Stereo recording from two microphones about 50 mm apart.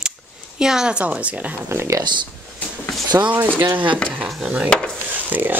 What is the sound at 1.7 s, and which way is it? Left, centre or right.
Speech, right.